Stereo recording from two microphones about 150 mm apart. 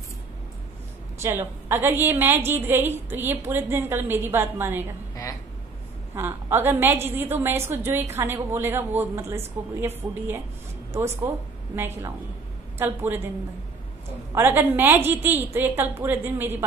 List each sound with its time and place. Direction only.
1.2 s a woman's voice: 15° right (ahead or behind)
6.1 s a woman's voice: 15° right (ahead or behind)
11.7 s a woman's voice: 15° right (ahead or behind)
14.3 s a woman's voice: 15° right (ahead or behind)